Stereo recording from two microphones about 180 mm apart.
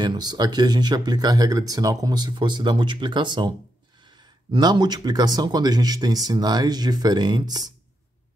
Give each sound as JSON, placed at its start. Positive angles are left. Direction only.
{"t": 0.0, "sound": "speech", "side_deg": -25}